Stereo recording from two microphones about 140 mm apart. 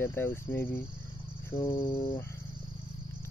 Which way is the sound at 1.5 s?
20° left (ahead or behind).